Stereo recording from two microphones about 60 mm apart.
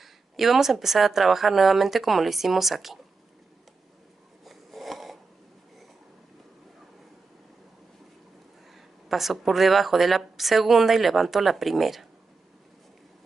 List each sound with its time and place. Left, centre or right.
0.0 s speech: centre
4.5 s a sound: centre
8.7 s speech: centre